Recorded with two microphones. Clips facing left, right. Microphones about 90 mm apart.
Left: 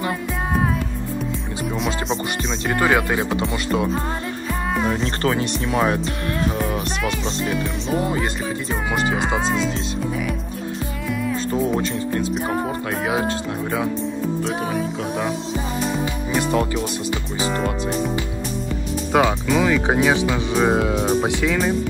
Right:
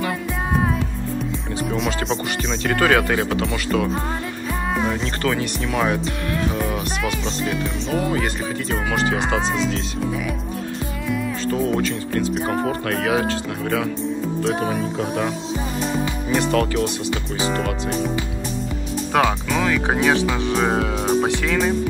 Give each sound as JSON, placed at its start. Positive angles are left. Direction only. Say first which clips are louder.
{"t": 0.6, "sound": "music", "louder": "even", "side_deg": 0}
{"t": 2.6, "sound": "speech", "louder": "right 1 dB", "side_deg": 10}
{"t": 4.6, "sound": "music", "louder": "even", "side_deg": 0}
{"t": 5.0, "sound": "speech", "louder": "left 1 dB", "side_deg": 35}
{"t": 7.0, "sound": "music", "louder": "even", "side_deg": 0}
{"t": 7.9, "sound": "speech", "louder": "even", "side_deg": 20}
{"t": 8.9, "sound": "speech", "louder": "even", "side_deg": 5}
{"t": 11.5, "sound": "music", "louder": "right 1 dB", "side_deg": 20}
{"t": 12.4, "sound": "speech", "louder": "right 1 dB", "side_deg": 5}
{"t": 14.4, "sound": "music", "louder": "right 2 dB", "side_deg": 0}
{"t": 19.1, "sound": "speech", "louder": "left 2 dB", "side_deg": 15}
{"t": 20.5, "sound": "music", "louder": "left 5 dB", "side_deg": 5}